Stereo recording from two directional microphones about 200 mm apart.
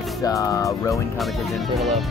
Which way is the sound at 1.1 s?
Centre (ahead or behind).